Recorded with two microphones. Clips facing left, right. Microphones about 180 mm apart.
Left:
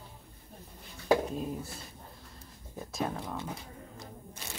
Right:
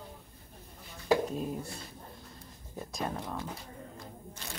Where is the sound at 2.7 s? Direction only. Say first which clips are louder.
Left 1 dB; centre (ahead or behind).